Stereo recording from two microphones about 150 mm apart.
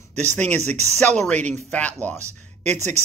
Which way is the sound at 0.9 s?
5° left (ahead or behind).